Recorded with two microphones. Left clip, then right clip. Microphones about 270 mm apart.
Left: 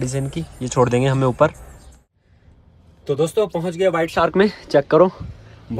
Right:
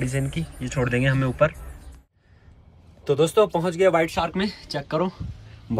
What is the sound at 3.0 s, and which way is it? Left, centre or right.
Speech, centre.